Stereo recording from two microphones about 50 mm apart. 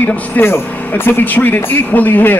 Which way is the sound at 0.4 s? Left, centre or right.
Left.